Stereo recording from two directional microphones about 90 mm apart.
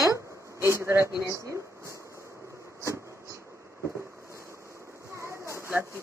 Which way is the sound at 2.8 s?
35° right (ahead or behind).